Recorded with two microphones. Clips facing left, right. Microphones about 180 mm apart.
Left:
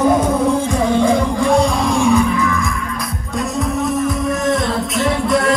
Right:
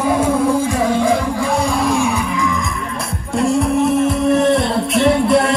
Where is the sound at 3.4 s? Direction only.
30° right (ahead or behind).